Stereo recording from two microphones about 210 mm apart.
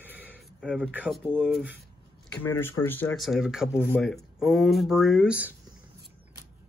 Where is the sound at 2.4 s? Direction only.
10° left (ahead or behind); by 5.5 s 5° right (ahead or behind).